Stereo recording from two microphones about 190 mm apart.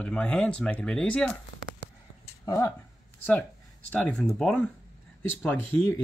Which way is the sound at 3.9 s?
5° left (ahead or behind).